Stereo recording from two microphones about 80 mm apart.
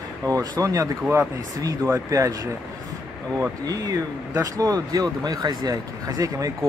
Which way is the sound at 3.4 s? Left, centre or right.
Right.